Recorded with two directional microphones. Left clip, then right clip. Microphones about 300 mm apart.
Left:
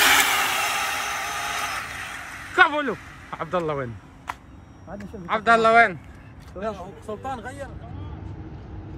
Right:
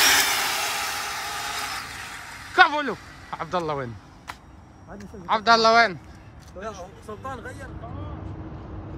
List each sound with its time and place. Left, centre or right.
0.1 s vehicle: centre
4.9 s speech: centre
6.6 s speech: left
7.9 s vehicle: centre